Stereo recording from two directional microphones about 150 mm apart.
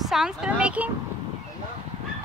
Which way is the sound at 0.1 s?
5° right (ahead or behind).